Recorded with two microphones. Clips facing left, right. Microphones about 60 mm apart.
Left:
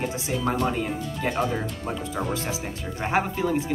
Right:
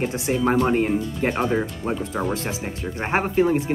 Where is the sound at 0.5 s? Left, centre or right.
Right.